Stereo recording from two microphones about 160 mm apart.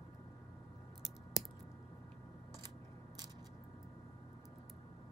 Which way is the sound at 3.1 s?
25° right (ahead or behind).